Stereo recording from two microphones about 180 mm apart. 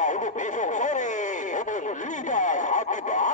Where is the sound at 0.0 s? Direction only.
45° left (ahead or behind).